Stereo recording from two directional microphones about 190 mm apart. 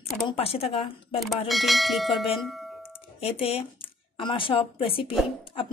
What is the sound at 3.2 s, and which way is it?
A woman's voice, 30° left (ahead or behind).